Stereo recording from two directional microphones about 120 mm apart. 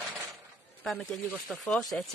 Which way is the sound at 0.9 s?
5° left (ahead or behind).